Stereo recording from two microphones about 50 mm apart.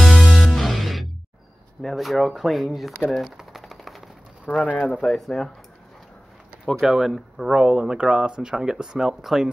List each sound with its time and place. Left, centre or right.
0.0 s music: centre
1.8 s speech: centre
3.3 s typewriter: centre
4.5 s speech: left
5.0 s speech: centre
6.6 s speech: centre
7.5 s speech: centre